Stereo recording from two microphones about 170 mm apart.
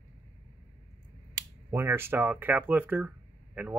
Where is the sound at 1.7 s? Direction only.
15° right (ahead or behind).